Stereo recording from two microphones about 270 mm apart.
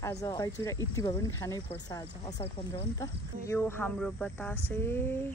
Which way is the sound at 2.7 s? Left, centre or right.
Centre.